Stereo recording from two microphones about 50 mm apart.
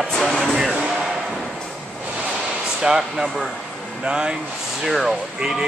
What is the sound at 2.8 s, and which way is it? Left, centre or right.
Speech, centre.